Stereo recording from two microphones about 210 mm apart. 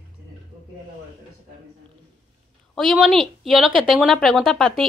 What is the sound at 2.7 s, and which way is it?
A woman's voice, centre (ahead or behind).